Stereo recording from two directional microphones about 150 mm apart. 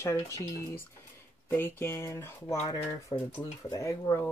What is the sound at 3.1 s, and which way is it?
Speech, 30° left (ahead or behind).